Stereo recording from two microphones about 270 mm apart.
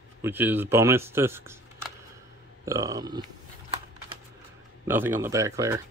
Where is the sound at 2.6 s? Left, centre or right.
Centre.